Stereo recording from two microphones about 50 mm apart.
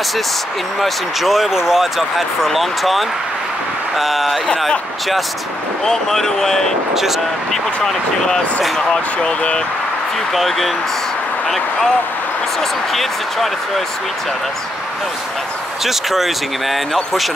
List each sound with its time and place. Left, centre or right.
0.7 s speech: centre
8.7 s speech: centre
10.3 s speech: centre
12.9 s speech: centre
15.8 s speech: centre